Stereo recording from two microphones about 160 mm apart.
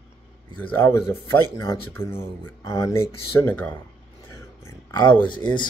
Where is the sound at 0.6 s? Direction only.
15° left (ahead or behind).